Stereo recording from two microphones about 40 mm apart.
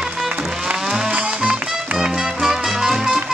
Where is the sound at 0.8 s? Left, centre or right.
Centre.